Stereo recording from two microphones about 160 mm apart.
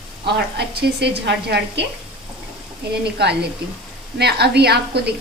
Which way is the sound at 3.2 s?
90° right.